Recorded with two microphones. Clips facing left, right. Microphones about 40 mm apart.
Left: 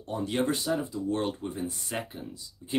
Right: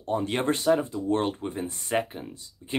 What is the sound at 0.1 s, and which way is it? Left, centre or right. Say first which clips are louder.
Speech: right 3 dB; right.